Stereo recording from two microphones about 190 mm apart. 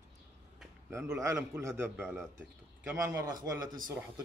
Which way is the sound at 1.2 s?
15° right (ahead or behind).